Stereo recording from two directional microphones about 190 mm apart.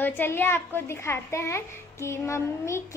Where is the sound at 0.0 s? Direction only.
10° left (ahead or behind).